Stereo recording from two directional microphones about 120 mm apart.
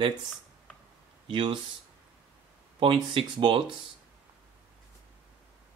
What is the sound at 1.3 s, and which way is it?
Speech, 45° right (ahead or behind).